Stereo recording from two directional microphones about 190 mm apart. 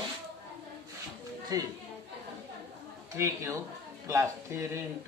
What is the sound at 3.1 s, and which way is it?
Speech, 15° right (ahead or behind).